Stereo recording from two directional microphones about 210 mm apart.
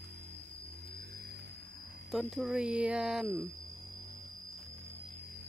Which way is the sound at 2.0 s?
Centre (ahead or behind).